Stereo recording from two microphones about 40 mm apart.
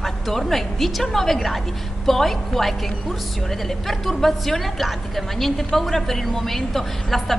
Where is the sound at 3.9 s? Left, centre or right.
Centre.